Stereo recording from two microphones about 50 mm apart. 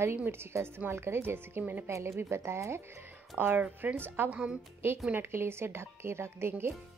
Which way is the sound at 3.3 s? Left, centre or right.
Centre.